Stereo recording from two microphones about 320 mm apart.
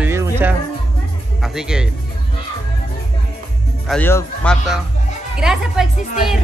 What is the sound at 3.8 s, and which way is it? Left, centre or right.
Speech, centre.